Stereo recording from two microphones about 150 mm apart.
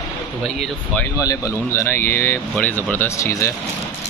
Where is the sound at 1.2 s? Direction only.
20° left (ahead or behind).